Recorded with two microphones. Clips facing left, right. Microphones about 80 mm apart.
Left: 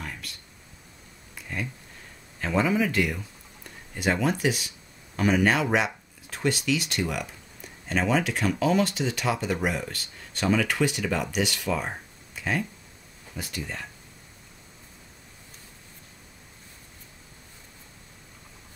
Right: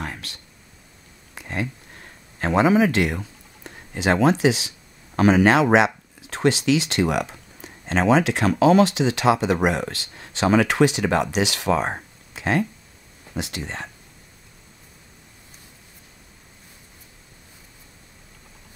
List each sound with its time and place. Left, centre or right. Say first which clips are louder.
0.0 s a sound: right 6 dB; right
2.4 s speech: right 7 dB; right
7.9 s speech: right 6 dB; right
11.3 s speech: right 6 dB; right
13.3 s speech: right 5 dB; right